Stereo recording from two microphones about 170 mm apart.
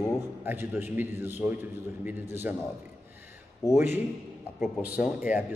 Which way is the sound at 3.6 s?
20° left (ahead or behind).